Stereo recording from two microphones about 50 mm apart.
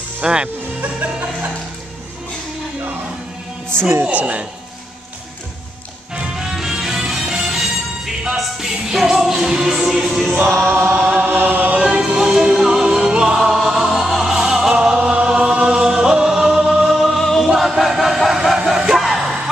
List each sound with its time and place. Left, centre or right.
0.2 s speech: centre
0.7 s music: right
4.1 s speech: right
6.1 s music: centre
10.7 s chant: right
11.8 s music: centre
16.9 s music: centre
17.5 s chant: centre
18.7 s music: centre
18.9 s music: centre